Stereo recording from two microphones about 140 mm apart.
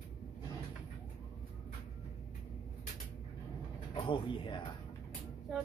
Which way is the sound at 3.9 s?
40° left (ahead or behind).